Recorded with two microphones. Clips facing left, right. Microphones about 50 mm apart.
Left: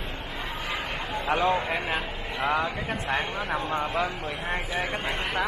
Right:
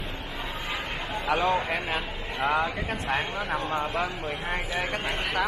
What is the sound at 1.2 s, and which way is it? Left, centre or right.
Speech, centre.